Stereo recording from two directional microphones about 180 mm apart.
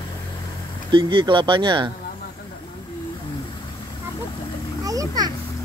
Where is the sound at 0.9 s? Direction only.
25° right (ahead or behind).